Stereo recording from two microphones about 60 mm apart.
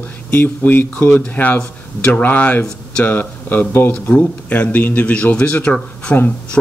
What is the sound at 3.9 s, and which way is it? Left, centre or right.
A man's voice, centre.